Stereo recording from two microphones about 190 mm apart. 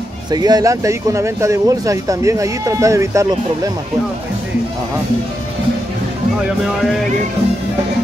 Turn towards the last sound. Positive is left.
turn(degrees=0)  # may be behind; listen again after turning